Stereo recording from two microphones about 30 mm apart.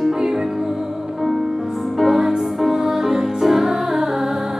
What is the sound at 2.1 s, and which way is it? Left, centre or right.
Music, centre.